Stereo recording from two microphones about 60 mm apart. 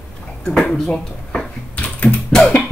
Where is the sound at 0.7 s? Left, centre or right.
Centre.